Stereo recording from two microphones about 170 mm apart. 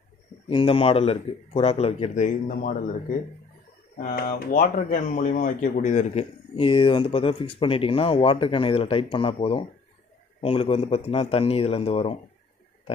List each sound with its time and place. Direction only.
0.5 s speech: 30° left (ahead or behind); by 2.7 s 50° left (ahead or behind)
4.0 s speech: 55° left (ahead or behind); by 12.2 s 35° left (ahead or behind)